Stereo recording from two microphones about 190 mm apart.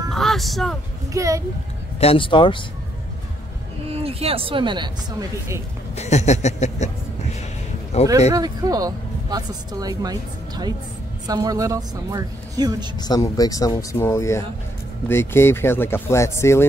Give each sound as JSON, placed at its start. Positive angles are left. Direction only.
{"t": 0.1, "sound": "vehicle", "side_deg": 0}
{"t": 1.1, "sound": "speech", "side_deg": -15}
{"t": 2.0, "sound": "speech", "side_deg": 30}
{"t": 3.9, "sound": "speech", "side_deg": -30}
{"t": 5.9, "sound": "a sound", "side_deg": 35}
{"t": 7.9, "sound": "a sound", "side_deg": 35}
{"t": 8.3, "sound": "speech", "side_deg": -20}
{"t": 13.0, "sound": "speech", "side_deg": 20}